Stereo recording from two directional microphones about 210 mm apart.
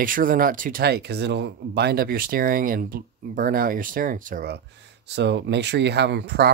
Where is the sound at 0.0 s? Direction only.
40° right (ahead or behind).